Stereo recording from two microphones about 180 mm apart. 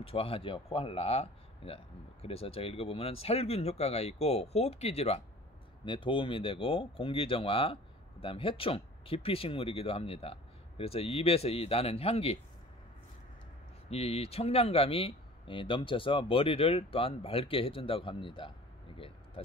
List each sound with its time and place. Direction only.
0.0 s speech: 30° left (ahead or behind)
13.8 s speech: 35° left (ahead or behind)
18.9 s vehicle: 30° left (ahead or behind)